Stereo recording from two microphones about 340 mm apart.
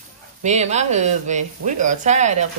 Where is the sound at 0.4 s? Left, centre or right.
Centre.